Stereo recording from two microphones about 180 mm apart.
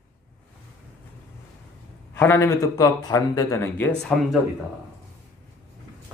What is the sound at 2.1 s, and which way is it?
A man's voice, 15° left (ahead or behind).